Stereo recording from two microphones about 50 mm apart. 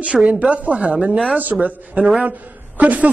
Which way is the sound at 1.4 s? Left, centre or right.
Right.